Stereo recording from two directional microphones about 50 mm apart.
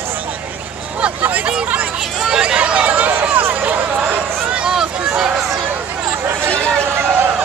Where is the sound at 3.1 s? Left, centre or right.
Right.